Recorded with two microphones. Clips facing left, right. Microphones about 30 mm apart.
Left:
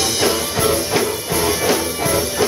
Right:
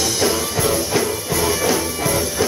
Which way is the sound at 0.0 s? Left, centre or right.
Centre.